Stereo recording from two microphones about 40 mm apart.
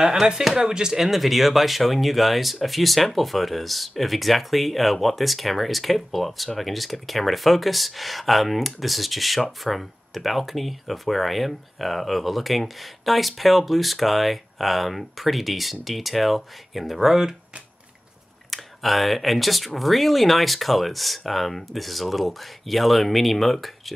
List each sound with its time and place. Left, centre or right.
0.0 s speech: centre
18.5 s speech: centre